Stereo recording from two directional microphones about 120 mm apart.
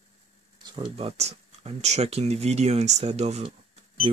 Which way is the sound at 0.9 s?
60° right (ahead or behind).